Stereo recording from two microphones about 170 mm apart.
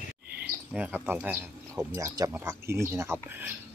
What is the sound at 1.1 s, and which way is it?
Speech, 10° right (ahead or behind).